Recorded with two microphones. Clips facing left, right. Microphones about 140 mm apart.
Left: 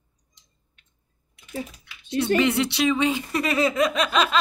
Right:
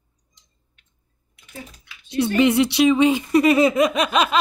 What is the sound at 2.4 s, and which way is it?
Speech, 15° right (ahead or behind).